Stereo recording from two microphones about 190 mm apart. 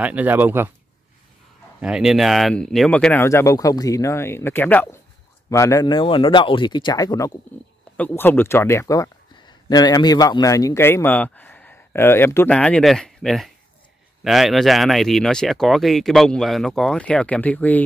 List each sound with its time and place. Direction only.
0.0 s speech: 10° right (ahead or behind)
1.8 s speech: 5° right (ahead or behind)